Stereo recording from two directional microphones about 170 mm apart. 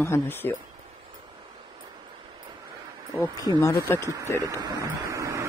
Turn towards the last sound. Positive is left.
turn(degrees=-20)  # may be behind; listen again after turning